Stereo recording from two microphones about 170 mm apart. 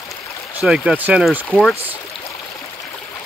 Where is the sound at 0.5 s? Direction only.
5° right (ahead or behind).